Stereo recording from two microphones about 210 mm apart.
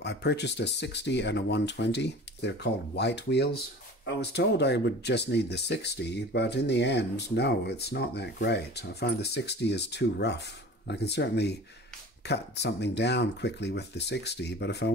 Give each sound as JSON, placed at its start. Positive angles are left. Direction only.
{"t": 0.0, "sound": "speech", "side_deg": 55}